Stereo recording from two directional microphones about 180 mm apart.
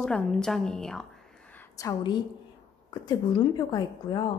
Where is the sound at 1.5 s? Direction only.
15° left (ahead or behind).